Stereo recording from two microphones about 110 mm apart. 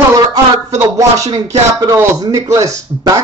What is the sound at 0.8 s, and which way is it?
A man's voice, 30° right (ahead or behind).